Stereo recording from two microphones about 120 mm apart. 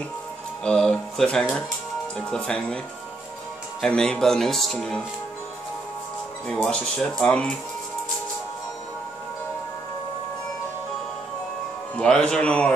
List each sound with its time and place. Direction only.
0.7 s speech: 5° left (ahead or behind)
3.8 s speech: 5° left (ahead or behind)
6.4 s speech: 5° left (ahead or behind)
12.0 s speech: 5° left (ahead or behind)